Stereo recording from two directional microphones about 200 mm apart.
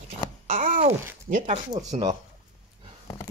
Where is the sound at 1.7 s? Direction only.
20° right (ahead or behind).